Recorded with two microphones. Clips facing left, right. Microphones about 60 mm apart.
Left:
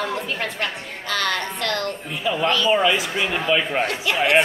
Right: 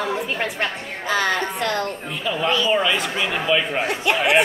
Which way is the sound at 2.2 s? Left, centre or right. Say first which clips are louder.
Left 1 dB; centre.